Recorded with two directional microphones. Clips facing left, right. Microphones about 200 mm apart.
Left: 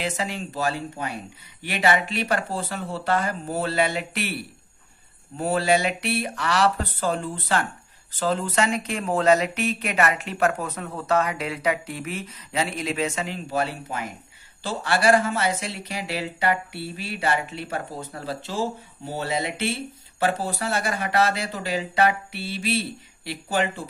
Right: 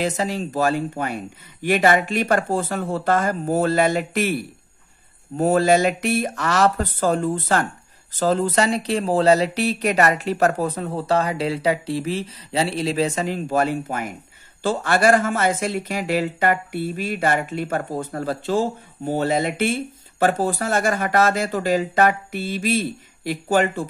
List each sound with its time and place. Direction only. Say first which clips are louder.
0.0 s speech: right 5 dB; 40° right (ahead or behind)
5.4 s speech: right 5 dB; 45° right (ahead or behind)